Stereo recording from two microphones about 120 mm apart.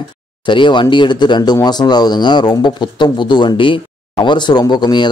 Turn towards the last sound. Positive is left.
turn(degrees=40)  # may be behind; listen again after turning